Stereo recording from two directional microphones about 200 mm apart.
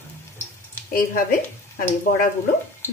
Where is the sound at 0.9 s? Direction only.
45° left (ahead or behind).